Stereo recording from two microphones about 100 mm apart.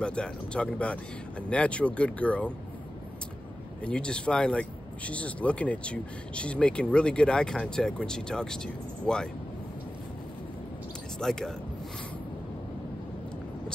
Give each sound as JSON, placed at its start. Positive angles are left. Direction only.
{"t": 0.0, "sound": "speech", "side_deg": 10}
{"t": 3.8, "sound": "speech", "side_deg": 10}
{"t": 11.1, "sound": "speech", "side_deg": 5}